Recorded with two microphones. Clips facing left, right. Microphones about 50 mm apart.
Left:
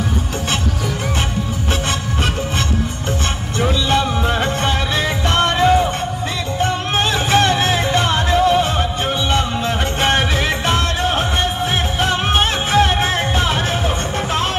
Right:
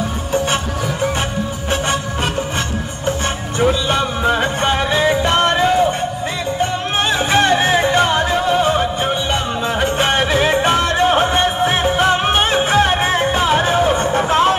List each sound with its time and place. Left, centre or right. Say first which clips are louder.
3.5 s music: right 1 dB; centre
7.0 s music: right 1 dB; centre
9.9 s music: right 1 dB; centre
11.0 s music: right 5 dB; right
12.4 s music: right 2 dB; centre